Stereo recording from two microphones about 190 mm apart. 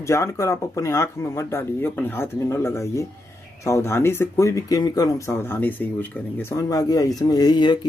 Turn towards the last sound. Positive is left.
turn(degrees=20)  # may be behind; listen again after turning